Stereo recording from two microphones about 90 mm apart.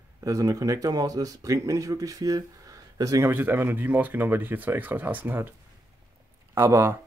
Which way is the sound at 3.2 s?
25° right (ahead or behind).